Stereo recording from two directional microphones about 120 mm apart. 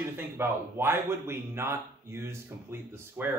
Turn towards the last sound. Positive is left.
turn(degrees=-20)  # may be behind; listen again after turning